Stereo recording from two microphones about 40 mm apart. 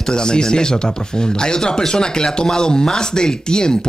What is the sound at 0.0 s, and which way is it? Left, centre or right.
Speech, centre.